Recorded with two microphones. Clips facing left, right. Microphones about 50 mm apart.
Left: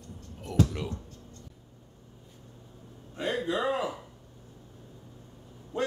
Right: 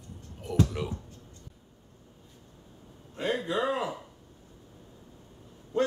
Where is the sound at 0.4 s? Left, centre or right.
Centre.